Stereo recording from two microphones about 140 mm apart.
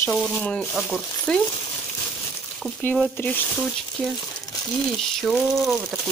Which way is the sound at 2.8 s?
15° left (ahead or behind).